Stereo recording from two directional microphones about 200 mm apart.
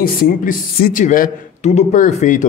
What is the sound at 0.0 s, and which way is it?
A man's voice, 45° left (ahead or behind).